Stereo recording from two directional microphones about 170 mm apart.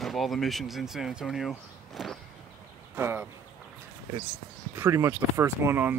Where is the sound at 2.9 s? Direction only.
15° right (ahead or behind).